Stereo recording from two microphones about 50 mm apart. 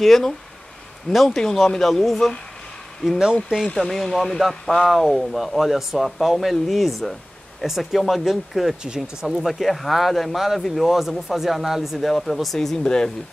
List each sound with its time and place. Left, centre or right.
0.0 s speech: centre
12.5 s speech: centre